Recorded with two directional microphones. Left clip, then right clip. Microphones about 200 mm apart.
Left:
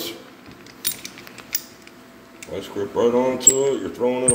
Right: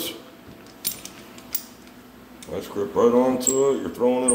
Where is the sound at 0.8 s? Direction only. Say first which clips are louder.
Left 4 dB; 20° right (ahead or behind).